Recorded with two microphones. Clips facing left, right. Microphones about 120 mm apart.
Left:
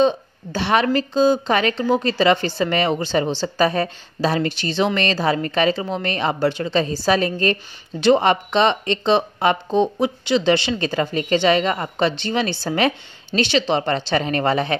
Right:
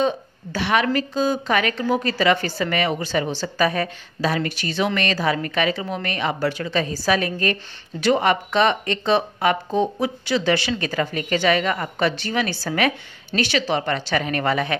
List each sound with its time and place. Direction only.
0.0 s a woman's voice: 25° left (ahead or behind)